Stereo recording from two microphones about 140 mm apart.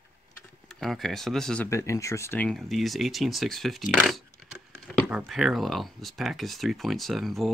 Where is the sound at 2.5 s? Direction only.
Centre (ahead or behind).